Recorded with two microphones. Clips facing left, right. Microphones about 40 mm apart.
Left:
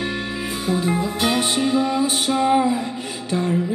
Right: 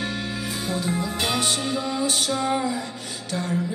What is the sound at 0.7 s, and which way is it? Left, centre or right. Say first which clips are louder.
Music: left 6 dB; left.